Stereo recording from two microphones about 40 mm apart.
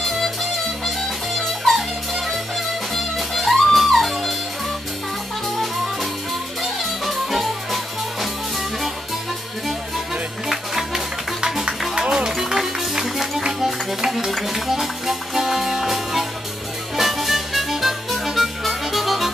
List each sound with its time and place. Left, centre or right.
0.0 s music: centre
6.6 s music: centre
10.5 s music: centre